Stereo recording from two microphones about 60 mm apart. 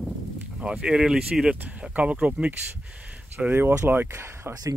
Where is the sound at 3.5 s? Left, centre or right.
Right.